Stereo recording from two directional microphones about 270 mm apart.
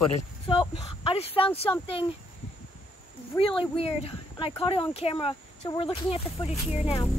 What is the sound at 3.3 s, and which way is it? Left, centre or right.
Speech, centre.